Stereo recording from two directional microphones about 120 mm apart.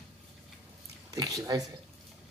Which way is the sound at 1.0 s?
30° right (ahead or behind).